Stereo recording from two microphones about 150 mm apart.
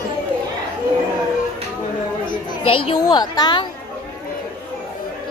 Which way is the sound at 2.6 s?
30° left (ahead or behind).